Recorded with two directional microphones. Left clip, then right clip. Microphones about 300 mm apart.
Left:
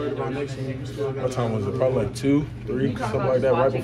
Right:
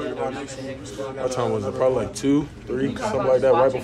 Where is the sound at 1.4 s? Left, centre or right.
Centre.